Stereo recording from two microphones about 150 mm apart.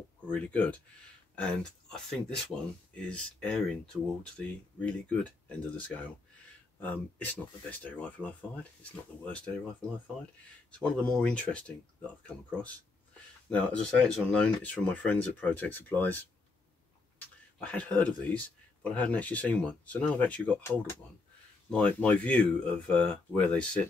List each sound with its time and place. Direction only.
0.3 s speech: 10° left (ahead or behind)
6.8 s speech: 10° left (ahead or behind)
11.1 s speech: 5° left (ahead or behind)
13.5 s speech: 5° left (ahead or behind)
17.6 s speech: 10° left (ahead or behind)